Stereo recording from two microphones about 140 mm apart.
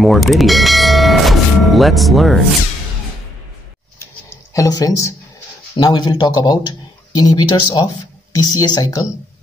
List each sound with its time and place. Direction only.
0.0 s bell: centre (ahead or behind)
4.6 s speech: 25° left (ahead or behind)